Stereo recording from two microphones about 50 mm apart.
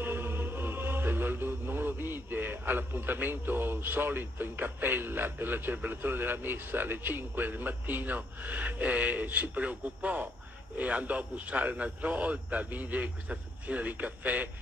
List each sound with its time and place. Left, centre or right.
0.0 s music: right
10.8 s a man's voice: right